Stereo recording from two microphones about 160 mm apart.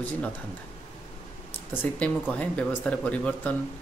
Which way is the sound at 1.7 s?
10° left (ahead or behind).